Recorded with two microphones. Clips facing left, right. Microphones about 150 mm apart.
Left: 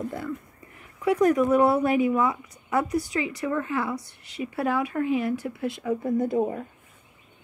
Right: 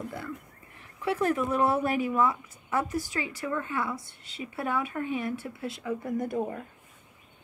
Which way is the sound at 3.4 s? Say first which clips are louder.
Left 3 dB; 25° left (ahead or behind).